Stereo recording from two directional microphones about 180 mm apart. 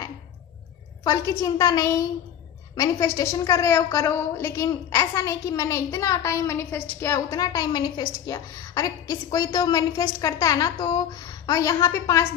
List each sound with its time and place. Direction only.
1.0 s a woman's voice: 20° left (ahead or behind)